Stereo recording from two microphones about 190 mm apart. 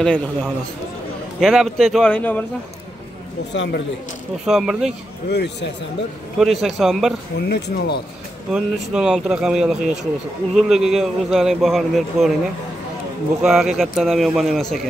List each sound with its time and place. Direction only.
0.0 s a man's voice: 5° left (ahead or behind)
3.5 s speech: 65° left (ahead or behind)
4.5 s a man's voice: centre (ahead or behind)
5.3 s speech: 60° left (ahead or behind)
6.3 s a man's voice: centre (ahead or behind)
7.3 s speech: 60° left (ahead or behind)
8.5 s a man's voice: centre (ahead or behind)
13.4 s a man's voice: 5° right (ahead or behind)